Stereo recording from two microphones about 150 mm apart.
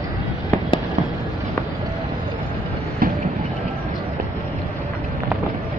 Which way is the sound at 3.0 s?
75° right (ahead or behind).